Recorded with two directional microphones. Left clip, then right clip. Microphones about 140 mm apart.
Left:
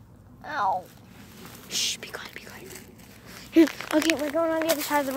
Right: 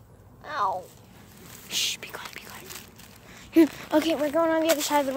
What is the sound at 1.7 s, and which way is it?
Speech, 25° right (ahead or behind).